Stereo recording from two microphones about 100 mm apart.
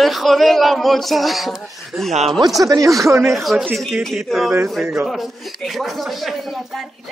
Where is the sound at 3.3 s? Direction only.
Centre (ahead or behind).